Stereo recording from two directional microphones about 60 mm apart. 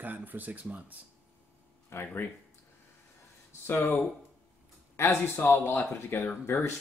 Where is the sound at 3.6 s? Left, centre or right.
Left.